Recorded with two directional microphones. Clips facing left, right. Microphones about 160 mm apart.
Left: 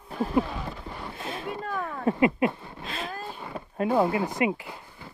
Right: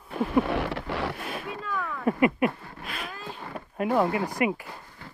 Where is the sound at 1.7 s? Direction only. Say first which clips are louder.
Right 2 dB; 40° left (ahead or behind).